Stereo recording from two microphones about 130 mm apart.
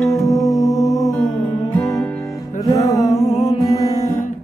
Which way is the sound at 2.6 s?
25° left (ahead or behind).